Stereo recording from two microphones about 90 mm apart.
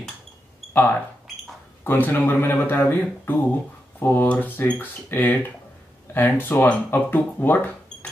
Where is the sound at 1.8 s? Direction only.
20° left (ahead or behind).